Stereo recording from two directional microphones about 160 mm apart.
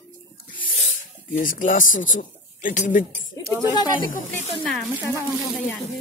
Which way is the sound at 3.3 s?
20° left (ahead or behind).